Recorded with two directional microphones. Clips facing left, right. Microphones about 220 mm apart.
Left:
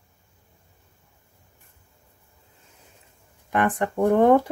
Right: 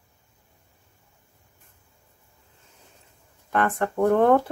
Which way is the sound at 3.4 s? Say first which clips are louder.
Left 1 dB; 15° left (ahead or behind).